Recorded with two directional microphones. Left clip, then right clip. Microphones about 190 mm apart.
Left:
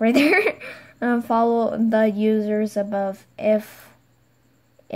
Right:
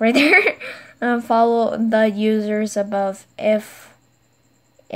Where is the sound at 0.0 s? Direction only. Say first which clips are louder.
Right 4 dB; centre (ahead or behind).